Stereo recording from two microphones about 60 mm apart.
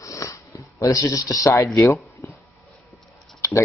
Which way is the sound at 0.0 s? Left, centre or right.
Left.